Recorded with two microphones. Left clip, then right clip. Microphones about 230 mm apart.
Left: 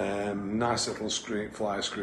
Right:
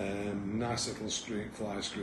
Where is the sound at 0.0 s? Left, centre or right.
Left.